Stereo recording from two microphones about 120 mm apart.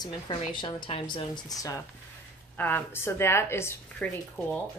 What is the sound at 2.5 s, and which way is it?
A woman's voice, 15° left (ahead or behind).